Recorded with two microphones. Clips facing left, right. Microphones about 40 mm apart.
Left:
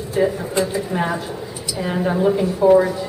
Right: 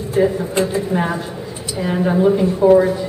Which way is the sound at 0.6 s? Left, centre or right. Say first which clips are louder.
Right 2 dB; right.